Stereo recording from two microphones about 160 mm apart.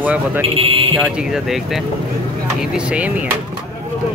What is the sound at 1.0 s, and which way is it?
Speech, 5° right (ahead or behind).